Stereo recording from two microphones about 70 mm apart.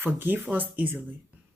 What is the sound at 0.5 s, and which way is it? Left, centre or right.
Speech, right.